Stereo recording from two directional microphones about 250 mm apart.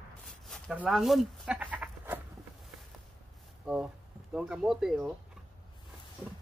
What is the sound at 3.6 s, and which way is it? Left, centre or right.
Speech, centre.